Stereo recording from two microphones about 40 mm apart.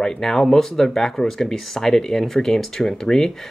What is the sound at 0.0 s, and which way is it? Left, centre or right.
Speech, centre.